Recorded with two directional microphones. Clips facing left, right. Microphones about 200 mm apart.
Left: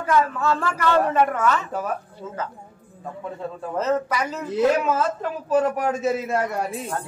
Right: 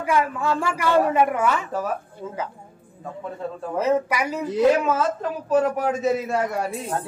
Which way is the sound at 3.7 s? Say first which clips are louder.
Right 2 dB; 10° right (ahead or behind).